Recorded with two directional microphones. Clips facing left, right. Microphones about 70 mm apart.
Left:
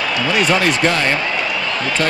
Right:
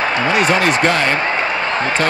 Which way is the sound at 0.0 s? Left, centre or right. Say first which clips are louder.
Right 2 dB; right.